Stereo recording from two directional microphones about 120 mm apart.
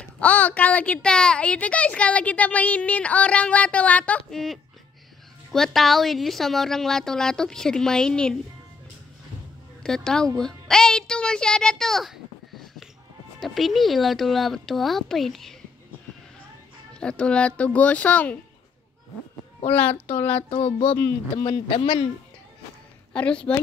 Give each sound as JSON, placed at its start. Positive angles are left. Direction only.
{"t": 0.0, "sound": "a woman's voice", "side_deg": 10}
{"t": 9.8, "sound": "a child's voice", "side_deg": 5}
{"t": 16.9, "sound": "a woman's voice", "side_deg": 10}
{"t": 19.7, "sound": "a woman's voice", "side_deg": 15}
{"t": 20.4, "sound": "speech", "side_deg": 50}
{"t": 23.1, "sound": "a woman's voice", "side_deg": 10}